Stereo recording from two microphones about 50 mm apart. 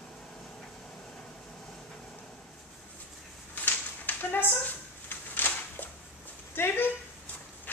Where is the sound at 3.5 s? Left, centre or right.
Left.